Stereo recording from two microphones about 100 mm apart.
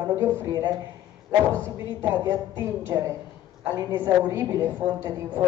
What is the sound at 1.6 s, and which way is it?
A woman's voice, 25° right (ahead or behind).